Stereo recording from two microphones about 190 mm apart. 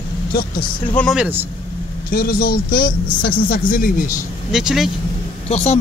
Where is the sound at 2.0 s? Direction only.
50° left (ahead or behind).